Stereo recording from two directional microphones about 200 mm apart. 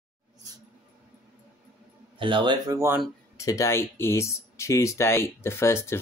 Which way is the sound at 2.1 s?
25° right (ahead or behind).